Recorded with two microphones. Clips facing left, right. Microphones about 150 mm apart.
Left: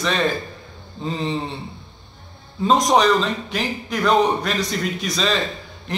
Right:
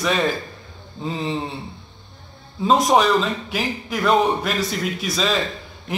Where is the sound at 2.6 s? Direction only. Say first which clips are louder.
Even; 5° right (ahead or behind).